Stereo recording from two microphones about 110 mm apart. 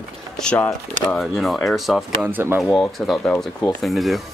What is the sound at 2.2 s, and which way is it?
Speech, 20° right (ahead or behind).